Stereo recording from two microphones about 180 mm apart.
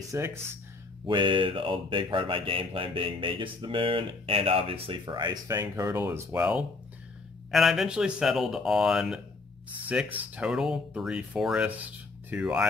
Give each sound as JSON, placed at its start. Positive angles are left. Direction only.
{"t": 0.1, "sound": "speech", "side_deg": -15}
{"t": 1.0, "sound": "speech", "side_deg": -25}